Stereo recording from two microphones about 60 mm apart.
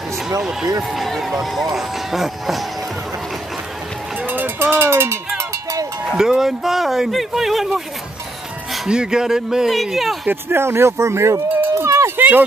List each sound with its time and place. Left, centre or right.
0.4 s speech: centre
0.9 s run: centre
1.3 s speech: centre
4.2 s a sound: right
6.1 s speech: centre
8.8 s speech: centre
10.5 s speech: right
12.2 s a sound: right